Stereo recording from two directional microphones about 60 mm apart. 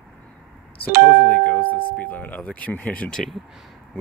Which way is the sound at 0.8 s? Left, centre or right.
Left.